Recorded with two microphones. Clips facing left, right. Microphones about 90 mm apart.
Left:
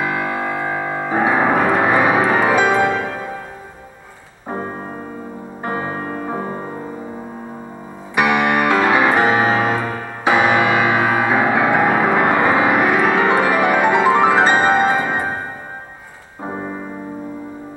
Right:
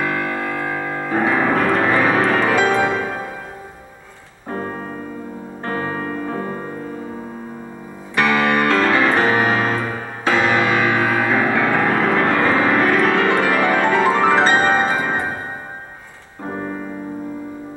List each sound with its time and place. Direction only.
0.0 s music: 15° left (ahead or behind)
4.5 s keyboard: 15° left (ahead or behind)
5.6 s music: 15° left (ahead or behind)
8.2 s music: 15° left (ahead or behind)
16.4 s piano: 10° left (ahead or behind)